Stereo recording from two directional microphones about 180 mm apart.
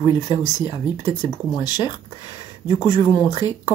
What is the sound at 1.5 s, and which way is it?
Speech, 25° left (ahead or behind).